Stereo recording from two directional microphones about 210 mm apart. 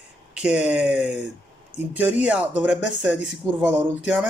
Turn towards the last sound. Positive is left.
turn(degrees=-5)  # may be behind; listen again after turning